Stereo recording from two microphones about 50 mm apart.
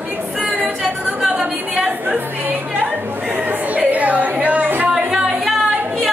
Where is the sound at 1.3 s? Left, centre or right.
Right.